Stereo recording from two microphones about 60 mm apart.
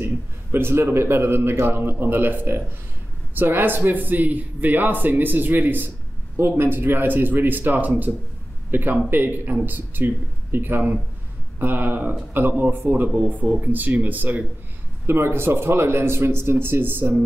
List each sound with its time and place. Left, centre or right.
0.0 s speech: right
15.0 s speech: right